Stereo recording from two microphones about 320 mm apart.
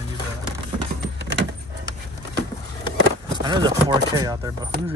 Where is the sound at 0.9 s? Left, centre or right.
Right.